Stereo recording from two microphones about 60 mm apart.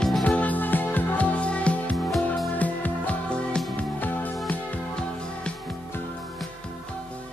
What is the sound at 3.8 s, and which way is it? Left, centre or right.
Music, left.